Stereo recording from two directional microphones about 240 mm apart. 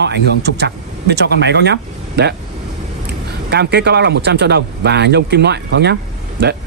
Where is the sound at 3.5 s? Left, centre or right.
Right.